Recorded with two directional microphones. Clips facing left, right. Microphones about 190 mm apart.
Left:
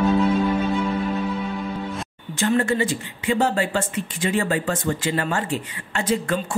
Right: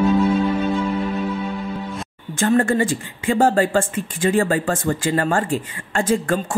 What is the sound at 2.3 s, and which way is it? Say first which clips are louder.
Speech: right 3 dB; 50° right (ahead or behind).